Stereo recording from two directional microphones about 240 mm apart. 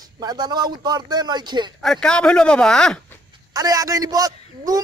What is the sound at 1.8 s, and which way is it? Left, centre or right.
Speech, centre.